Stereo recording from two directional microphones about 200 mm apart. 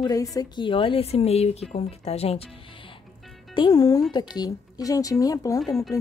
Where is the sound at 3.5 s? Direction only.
20° left (ahead or behind).